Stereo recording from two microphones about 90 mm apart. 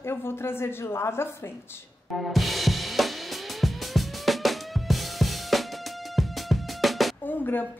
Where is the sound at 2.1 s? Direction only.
Centre (ahead or behind).